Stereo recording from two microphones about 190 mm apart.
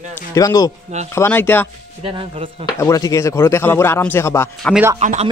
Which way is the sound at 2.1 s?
30° right (ahead or behind).